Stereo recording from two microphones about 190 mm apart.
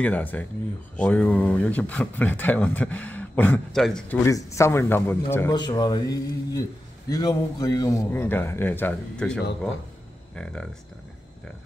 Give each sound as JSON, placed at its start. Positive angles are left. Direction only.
{"t": 0.0, "sound": "speech", "side_deg": 10}
{"t": 4.2, "sound": "speech", "side_deg": 15}